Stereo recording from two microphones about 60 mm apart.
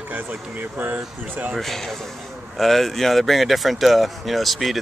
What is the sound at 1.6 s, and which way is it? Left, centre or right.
Speech, centre.